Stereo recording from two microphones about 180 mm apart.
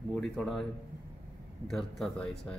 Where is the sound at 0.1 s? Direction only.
Centre (ahead or behind).